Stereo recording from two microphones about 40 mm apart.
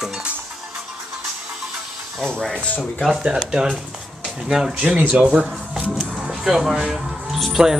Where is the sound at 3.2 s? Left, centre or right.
Right.